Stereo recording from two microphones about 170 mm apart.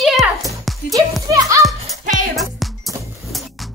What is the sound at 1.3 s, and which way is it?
Speech, 20° right (ahead or behind).